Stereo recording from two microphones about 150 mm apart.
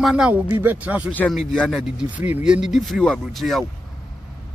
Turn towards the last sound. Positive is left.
turn(degrees=0)  # may be behind; listen again after turning